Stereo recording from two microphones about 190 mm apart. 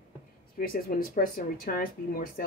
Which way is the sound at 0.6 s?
50° left (ahead or behind).